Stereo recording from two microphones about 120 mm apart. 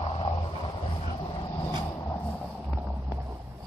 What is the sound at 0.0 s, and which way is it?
Vehicle, 55° left (ahead or behind).